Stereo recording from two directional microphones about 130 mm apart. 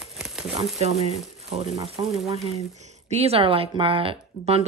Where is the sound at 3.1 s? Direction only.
50° right (ahead or behind).